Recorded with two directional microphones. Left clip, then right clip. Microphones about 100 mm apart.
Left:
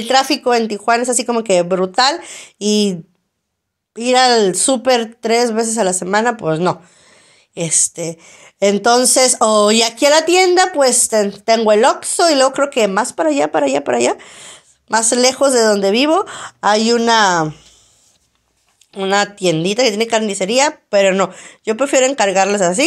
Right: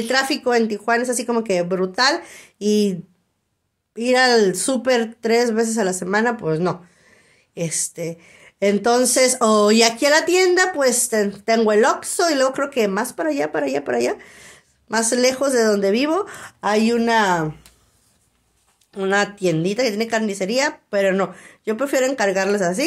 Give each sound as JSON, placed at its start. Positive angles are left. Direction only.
{"t": 0.0, "sound": "speech", "side_deg": 20}
{"t": 2.6, "sound": "speech", "side_deg": 15}
{"t": 8.5, "sound": "speech", "side_deg": 20}
{"t": 18.9, "sound": "speech", "side_deg": 10}